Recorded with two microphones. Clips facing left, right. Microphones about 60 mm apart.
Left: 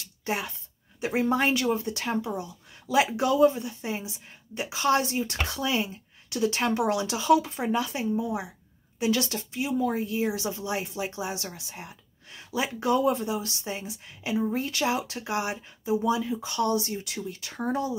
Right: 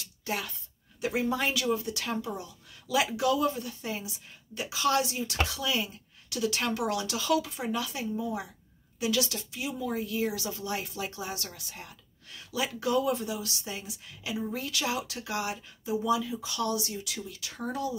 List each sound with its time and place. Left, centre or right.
0.0 s a sound: left
1.3 s speech: left
9.0 s speech: left